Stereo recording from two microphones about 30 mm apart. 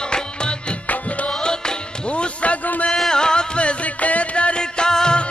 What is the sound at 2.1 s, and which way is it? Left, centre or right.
Music, left.